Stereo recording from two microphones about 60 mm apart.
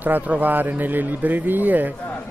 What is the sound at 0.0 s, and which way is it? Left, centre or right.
Speech, right.